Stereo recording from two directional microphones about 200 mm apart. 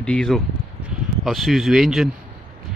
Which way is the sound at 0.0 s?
5° left (ahead or behind).